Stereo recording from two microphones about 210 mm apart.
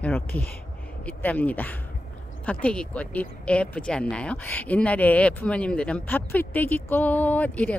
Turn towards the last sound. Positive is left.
turn(degrees=5)  # may be behind; listen again after turning